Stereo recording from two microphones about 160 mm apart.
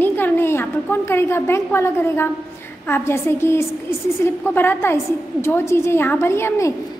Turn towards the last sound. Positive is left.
turn(degrees=15)  # may be behind; listen again after turning